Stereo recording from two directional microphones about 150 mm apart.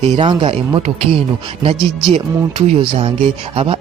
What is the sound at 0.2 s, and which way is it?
Speech, 35° right (ahead or behind).